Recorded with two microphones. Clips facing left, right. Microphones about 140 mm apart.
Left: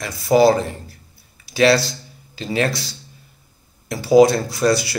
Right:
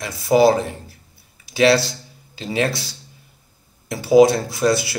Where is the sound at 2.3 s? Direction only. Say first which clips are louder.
Left 1 dB; 15° right (ahead or behind).